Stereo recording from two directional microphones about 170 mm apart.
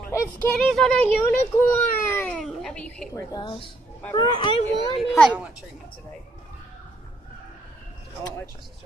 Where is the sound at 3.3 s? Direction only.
30° left (ahead or behind).